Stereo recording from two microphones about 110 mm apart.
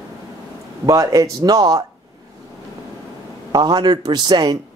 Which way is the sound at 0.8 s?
30° right (ahead or behind).